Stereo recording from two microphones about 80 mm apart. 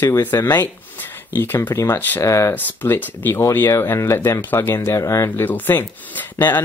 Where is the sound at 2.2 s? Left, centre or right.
Left.